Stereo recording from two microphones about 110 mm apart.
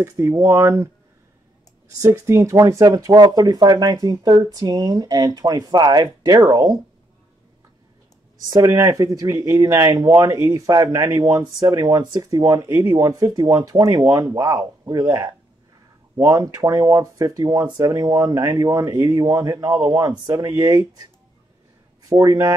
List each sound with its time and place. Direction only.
0.0 s speech: 25° right (ahead or behind)
2.1 s speech: 25° right (ahead or behind)
8.5 s speech: 30° right (ahead or behind)
22.1 s speech: 35° right (ahead or behind)